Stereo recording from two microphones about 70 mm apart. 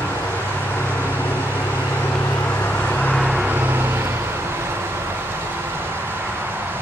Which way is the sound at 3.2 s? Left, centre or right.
Right.